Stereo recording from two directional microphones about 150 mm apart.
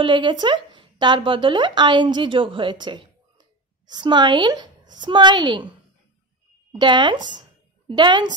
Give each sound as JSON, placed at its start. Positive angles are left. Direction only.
{"t": 0.0, "sound": "speech", "side_deg": -30}
{"t": 6.7, "sound": "speech", "side_deg": -30}